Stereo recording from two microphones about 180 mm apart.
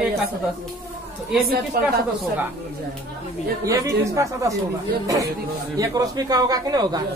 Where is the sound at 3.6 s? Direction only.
15° right (ahead or behind).